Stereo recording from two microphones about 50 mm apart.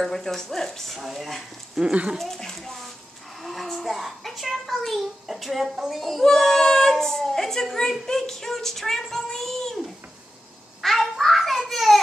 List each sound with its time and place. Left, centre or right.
0.0 s a child's voice: centre
0.9 s a child's voice: centre
1.8 s speech: right
2.1 s a child's voice: centre
10.8 s a sound: centre